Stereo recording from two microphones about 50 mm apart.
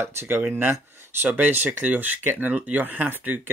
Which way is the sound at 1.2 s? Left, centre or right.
Right.